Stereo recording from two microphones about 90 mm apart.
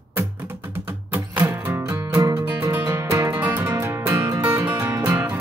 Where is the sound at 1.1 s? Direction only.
20° right (ahead or behind).